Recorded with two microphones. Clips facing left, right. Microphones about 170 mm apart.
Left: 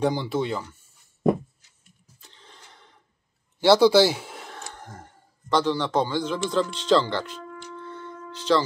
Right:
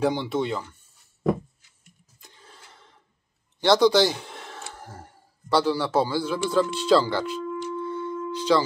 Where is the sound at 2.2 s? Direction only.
10° right (ahead or behind).